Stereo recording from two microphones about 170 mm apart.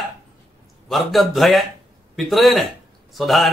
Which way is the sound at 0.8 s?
Centre (ahead or behind).